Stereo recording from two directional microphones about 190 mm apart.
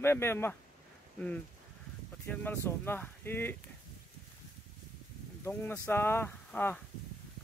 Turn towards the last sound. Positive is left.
turn(degrees=10)  # may be behind; listen again after turning